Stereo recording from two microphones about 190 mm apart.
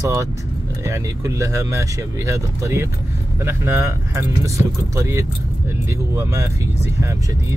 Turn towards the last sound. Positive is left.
turn(degrees=-15)  # may be behind; listen again after turning